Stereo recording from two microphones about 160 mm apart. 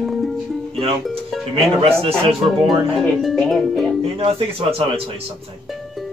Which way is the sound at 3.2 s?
Centre (ahead or behind).